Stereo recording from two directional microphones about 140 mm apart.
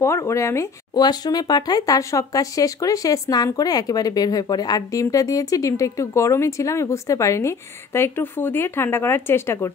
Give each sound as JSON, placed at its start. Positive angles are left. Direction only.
{"t": 0.0, "sound": "speech", "side_deg": 20}